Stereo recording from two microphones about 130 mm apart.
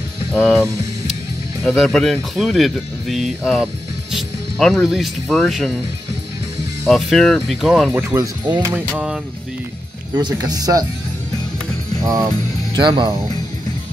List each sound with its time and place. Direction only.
0.3 s speech: 5° left (ahead or behind)
6.9 s speech: centre (ahead or behind)
8.1 s speech: 20° right (ahead or behind)
8.7 s speech: 5° right (ahead or behind)
10.1 s speech: 30° right (ahead or behind)
12.0 s speech: 30° right (ahead or behind)